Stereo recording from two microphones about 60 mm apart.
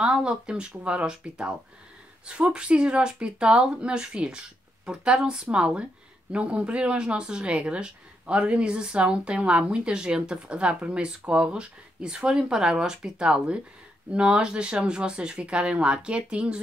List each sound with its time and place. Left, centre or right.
0.0 s speech: centre